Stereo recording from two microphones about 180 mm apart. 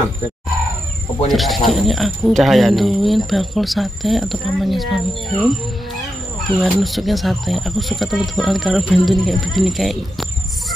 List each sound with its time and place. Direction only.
1.3 s speech: centre (ahead or behind)